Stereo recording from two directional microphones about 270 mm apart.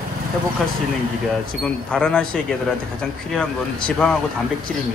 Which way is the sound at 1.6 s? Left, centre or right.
Centre.